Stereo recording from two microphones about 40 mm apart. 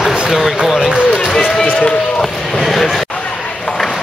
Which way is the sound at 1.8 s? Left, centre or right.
Left.